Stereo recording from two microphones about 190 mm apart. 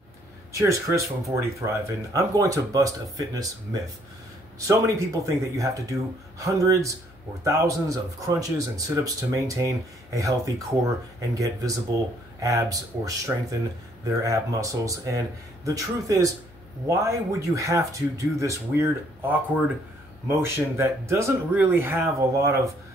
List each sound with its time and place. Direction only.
0.5 s speech: 15° right (ahead or behind)